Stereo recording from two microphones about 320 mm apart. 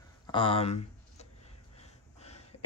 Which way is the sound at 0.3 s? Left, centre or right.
Centre.